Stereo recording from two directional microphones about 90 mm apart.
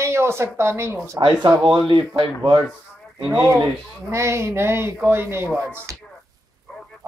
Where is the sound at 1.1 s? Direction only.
55° right (ahead or behind).